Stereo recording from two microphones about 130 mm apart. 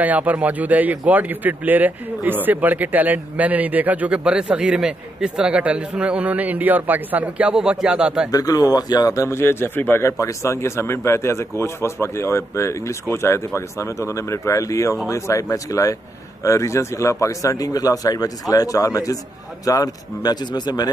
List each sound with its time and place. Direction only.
0.0 s a man's voice: 10° right (ahead or behind)
8.3 s a man's voice: 30° left (ahead or behind)